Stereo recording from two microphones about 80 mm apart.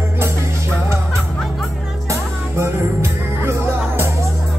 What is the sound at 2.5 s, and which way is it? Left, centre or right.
Music, right.